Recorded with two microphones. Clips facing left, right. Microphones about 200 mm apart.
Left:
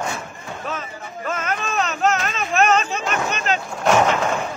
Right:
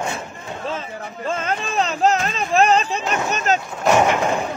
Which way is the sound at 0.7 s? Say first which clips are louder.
Right 3 dB; 30° right (ahead or behind).